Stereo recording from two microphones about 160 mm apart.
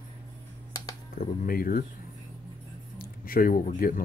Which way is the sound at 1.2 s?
65° left (ahead or behind).